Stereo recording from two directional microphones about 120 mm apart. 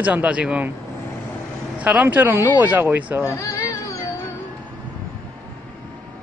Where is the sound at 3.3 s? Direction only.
25° left (ahead or behind).